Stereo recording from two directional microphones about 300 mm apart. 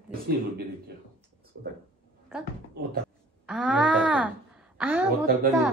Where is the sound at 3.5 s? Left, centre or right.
Centre.